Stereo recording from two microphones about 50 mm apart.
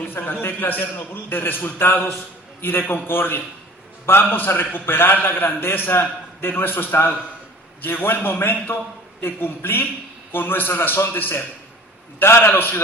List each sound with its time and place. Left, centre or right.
0.1 s a man's voice: left